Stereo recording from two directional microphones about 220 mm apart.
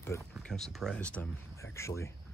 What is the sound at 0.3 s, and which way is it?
Speech, centre (ahead or behind).